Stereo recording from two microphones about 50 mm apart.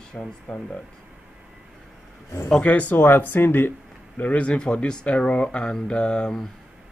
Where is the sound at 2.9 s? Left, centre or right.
Left.